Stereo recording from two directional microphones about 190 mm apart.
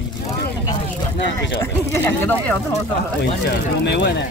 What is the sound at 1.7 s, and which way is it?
Speech, 10° left (ahead or behind).